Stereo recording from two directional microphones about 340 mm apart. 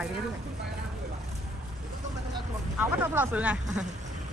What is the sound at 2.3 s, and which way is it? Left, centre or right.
Speech, centre.